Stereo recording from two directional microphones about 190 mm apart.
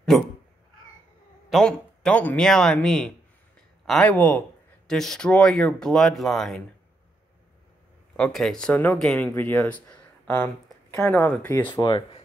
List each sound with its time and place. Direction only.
0.1 s speech: centre (ahead or behind)
1.5 s speech: 5° left (ahead or behind)
8.2 s speech: centre (ahead or behind)
11.7 s speech: 25° left (ahead or behind)